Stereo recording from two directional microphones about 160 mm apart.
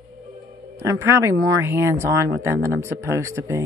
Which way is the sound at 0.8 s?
15° right (ahead or behind).